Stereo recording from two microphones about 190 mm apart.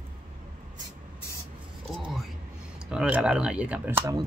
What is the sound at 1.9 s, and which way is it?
Music, centre (ahead or behind).